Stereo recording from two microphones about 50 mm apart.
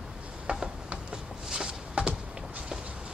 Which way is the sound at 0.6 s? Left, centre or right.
Centre.